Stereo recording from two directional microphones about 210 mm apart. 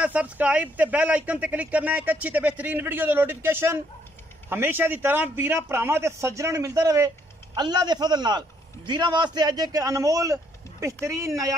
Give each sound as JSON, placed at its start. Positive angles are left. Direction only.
{"t": 0.0, "sound": "a man's voice", "side_deg": -5}